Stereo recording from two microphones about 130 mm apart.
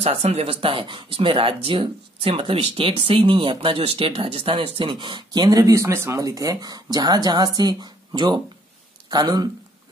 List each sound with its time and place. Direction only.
0.0 s speech: 50° right (ahead or behind); by 9.5 s 30° right (ahead or behind)